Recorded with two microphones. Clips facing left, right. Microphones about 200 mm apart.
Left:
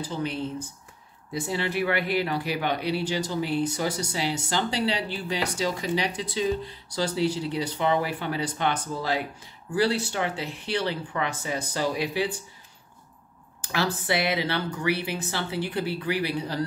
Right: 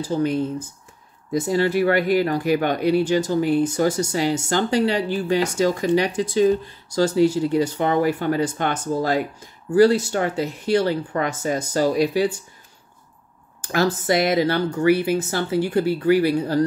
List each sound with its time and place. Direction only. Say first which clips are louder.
0.0 s speech: right 8 dB; 45° right (ahead or behind)
13.6 s speech: right 7 dB; 45° right (ahead or behind)